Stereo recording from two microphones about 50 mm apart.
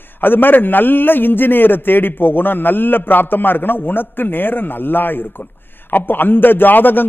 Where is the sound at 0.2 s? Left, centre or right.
Left.